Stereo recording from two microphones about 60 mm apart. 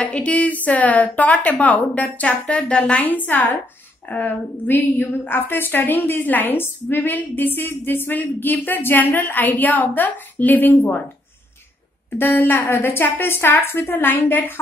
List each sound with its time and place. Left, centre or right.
0.0 s a woman's voice: left
12.2 s a woman's voice: left